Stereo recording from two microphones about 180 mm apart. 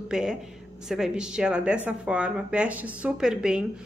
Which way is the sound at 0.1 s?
5° right (ahead or behind).